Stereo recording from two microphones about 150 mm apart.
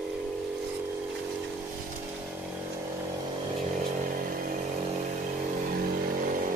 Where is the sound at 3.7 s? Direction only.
70° right (ahead or behind).